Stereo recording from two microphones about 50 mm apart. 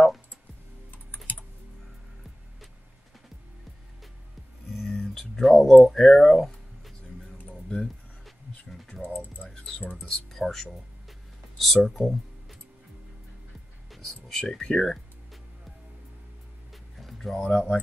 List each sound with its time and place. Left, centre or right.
4.7 s a sound: centre
9.0 s typing: left
9.5 s music: centre
13.8 s music: centre
14.4 s speech: centre
16.7 s music: centre
17.5 s speech: centre